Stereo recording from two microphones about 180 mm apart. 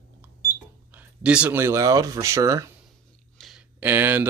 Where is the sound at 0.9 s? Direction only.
5° right (ahead or behind).